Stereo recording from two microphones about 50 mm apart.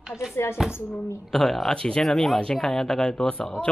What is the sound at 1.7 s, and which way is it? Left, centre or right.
Speech, centre.